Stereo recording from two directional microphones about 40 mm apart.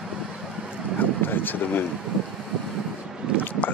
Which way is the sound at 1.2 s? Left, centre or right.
Left.